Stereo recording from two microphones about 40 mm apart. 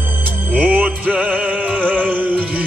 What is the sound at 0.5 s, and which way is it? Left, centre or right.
Music, right.